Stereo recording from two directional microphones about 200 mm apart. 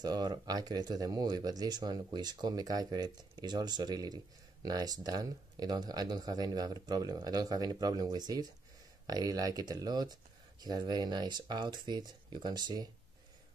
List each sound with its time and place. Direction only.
0.0 s speech: 20° right (ahead or behind)